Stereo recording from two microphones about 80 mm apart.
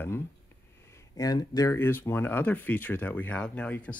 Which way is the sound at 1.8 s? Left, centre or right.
Left.